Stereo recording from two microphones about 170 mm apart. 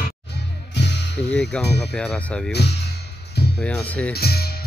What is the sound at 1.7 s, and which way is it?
Speech, 80° left.